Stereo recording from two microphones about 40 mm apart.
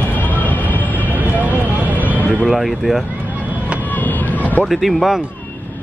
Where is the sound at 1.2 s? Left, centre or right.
Right.